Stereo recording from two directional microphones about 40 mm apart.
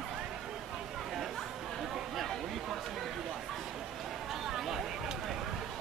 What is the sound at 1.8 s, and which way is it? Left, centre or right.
Chatter, centre.